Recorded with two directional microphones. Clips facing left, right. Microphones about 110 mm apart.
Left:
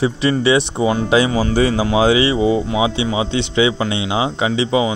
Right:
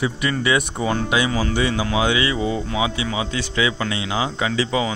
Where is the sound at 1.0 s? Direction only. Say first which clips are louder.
Left 6 dB; 30° left (ahead or behind).